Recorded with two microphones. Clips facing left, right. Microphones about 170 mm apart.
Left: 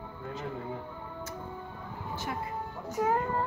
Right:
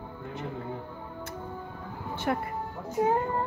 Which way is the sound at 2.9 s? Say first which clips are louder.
Right 3 dB; 25° right (ahead or behind).